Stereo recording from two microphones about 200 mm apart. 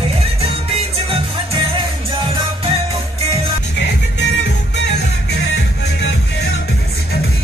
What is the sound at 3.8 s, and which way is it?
Music, 60° left (ahead or behind).